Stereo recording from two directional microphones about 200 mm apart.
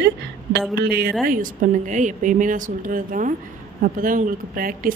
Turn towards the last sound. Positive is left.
turn(degrees=-45)  # may be behind; listen again after turning